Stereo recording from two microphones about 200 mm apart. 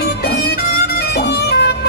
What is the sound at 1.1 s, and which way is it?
Music, 55° left (ahead or behind).